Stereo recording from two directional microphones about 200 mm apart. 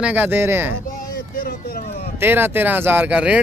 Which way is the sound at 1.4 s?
50° left (ahead or behind).